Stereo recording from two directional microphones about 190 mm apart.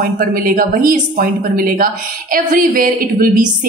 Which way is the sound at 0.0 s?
45° right (ahead or behind).